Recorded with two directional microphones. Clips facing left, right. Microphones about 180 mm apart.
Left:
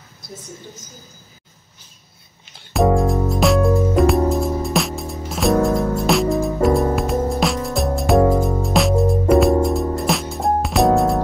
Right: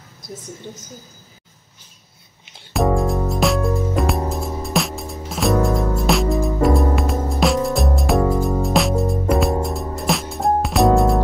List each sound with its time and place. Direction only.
2.7 s music: centre (ahead or behind)